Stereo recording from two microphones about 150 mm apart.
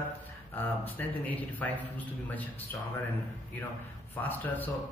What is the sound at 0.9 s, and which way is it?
Speech, 10° left (ahead or behind).